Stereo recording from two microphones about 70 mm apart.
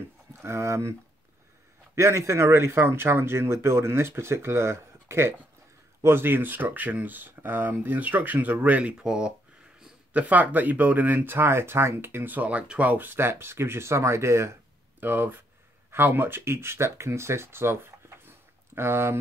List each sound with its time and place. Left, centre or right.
0.3 s speech: right
2.0 s speech: right
9.0 s speech: centre; by 14.6 s right
15.0 s speech: right